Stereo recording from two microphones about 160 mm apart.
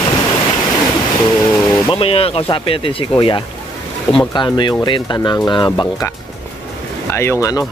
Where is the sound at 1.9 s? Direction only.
35° left (ahead or behind).